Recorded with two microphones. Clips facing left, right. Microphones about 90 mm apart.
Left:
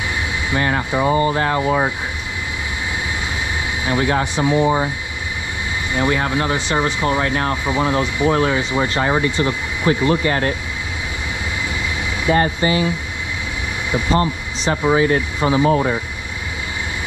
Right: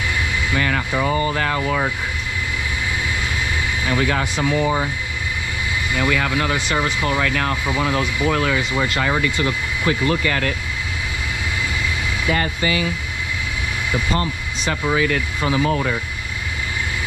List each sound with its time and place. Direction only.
0.5 s speech: 30° left (ahead or behind)
3.8 s speech: 25° left (ahead or behind)
5.9 s speech: 30° left (ahead or behind)
12.3 s speech: 25° left (ahead or behind)
14.1 s speech: 25° left (ahead or behind)